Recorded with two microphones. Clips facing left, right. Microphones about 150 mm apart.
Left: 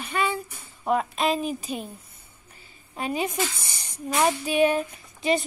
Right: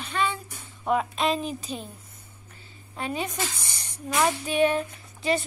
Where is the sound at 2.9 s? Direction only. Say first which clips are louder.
Left 3 dB; 10° left (ahead or behind).